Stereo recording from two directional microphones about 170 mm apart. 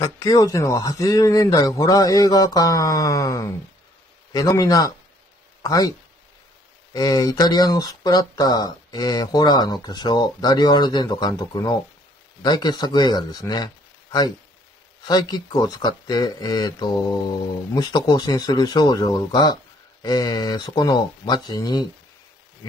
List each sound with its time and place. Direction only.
0.0 s speech: 20° left (ahead or behind)
15.0 s speech: 25° left (ahead or behind)